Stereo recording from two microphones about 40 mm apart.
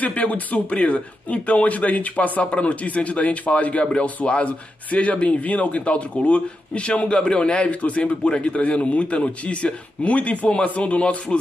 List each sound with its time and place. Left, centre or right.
0.0 s speech: left